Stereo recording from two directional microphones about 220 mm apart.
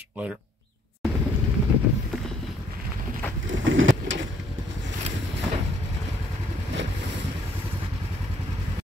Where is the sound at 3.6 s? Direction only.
60° right (ahead or behind).